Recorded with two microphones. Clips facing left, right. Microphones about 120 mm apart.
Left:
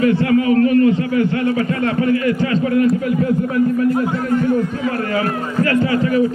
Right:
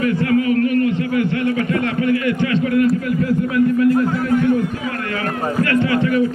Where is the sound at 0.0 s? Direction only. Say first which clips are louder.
Left 2 dB; 30° left (ahead or behind).